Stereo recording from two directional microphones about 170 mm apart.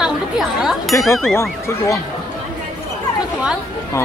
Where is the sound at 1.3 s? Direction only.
15° left (ahead or behind).